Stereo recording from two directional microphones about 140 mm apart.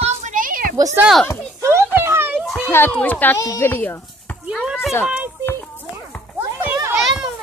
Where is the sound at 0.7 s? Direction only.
25° right (ahead or behind).